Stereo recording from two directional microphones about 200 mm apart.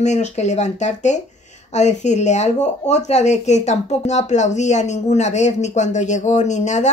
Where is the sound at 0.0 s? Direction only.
35° left (ahead or behind).